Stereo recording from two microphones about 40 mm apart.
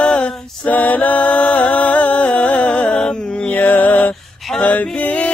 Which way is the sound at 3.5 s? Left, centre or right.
Left.